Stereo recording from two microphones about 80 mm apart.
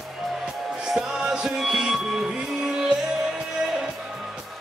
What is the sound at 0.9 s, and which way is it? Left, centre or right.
Music, centre.